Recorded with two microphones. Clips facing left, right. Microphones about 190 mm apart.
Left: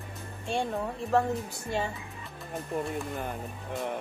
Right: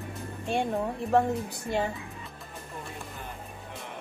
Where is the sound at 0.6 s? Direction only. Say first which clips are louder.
Right 2 dB; 15° right (ahead or behind).